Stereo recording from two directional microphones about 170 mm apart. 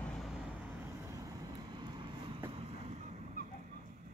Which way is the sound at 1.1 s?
20° right (ahead or behind).